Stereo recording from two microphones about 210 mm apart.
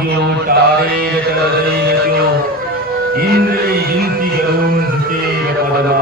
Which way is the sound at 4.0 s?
45° right (ahead or behind).